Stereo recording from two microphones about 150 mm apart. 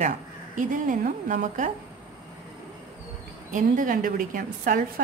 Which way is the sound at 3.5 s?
65° right (ahead or behind).